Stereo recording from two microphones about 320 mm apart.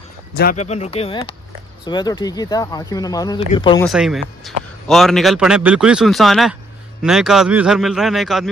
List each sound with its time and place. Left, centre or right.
0.4 s speech: left
3.8 s speech: centre